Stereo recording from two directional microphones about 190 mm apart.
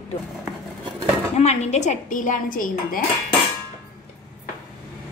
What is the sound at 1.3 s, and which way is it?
Dishes, 35° left (ahead or behind).